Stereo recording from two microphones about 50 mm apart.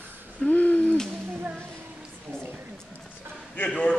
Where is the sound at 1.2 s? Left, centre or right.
Right.